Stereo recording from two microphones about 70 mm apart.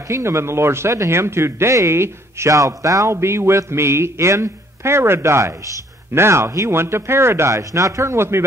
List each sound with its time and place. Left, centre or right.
0.1 s speech: right